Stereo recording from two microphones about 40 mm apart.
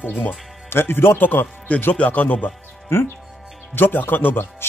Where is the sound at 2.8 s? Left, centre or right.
Left.